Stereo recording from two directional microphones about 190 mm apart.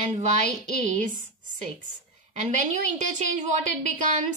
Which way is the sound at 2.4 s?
40° right (ahead or behind).